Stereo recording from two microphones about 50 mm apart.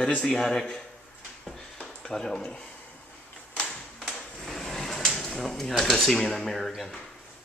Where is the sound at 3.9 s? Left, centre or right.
Centre.